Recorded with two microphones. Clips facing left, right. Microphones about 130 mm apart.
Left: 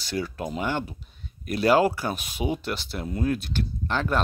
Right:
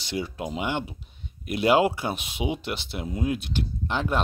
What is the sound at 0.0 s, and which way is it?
Speech, 20° right (ahead or behind).